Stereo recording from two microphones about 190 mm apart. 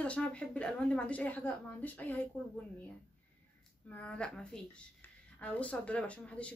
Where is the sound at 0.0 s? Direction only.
5° left (ahead or behind).